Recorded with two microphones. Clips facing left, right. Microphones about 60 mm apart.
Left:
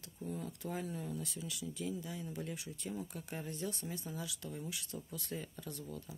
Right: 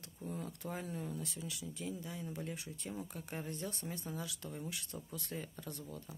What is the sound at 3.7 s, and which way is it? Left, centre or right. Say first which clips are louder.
Speech: left 1 dB; right.